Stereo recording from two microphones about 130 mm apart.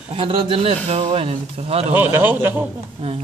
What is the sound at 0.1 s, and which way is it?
Speech, 45° right (ahead or behind).